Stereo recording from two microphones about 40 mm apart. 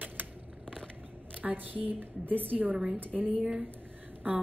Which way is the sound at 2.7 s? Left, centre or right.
Right.